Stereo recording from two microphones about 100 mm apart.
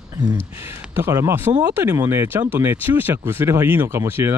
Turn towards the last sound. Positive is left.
turn(degrees=-25)  # may be behind; listen again after turning